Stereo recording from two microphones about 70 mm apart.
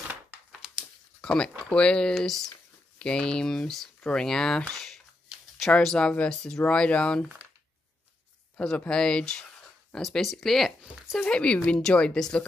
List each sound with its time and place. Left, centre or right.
1.2 s speech: centre
4.7 s a sound: centre
5.8 s speech: centre
8.5 s speech: centre